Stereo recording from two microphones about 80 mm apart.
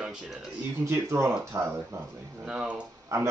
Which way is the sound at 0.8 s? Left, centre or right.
Right.